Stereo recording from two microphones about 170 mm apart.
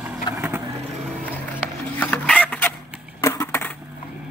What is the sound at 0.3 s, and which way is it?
Vehicle, 25° left (ahead or behind).